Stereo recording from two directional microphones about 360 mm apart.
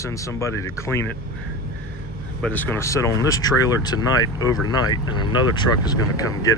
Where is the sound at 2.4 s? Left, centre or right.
Centre.